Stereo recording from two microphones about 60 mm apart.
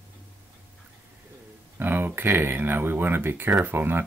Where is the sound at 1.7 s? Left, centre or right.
Right.